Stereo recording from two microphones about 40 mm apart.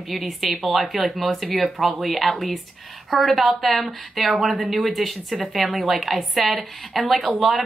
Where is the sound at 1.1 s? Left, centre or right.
Centre.